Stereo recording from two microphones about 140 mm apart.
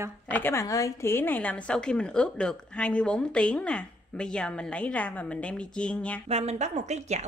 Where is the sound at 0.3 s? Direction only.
15° left (ahead or behind).